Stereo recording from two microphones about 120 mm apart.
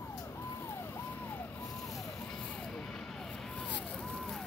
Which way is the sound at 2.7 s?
5° left (ahead or behind).